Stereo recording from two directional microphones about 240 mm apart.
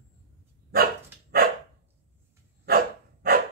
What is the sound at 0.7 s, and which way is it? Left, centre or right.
Dog, right.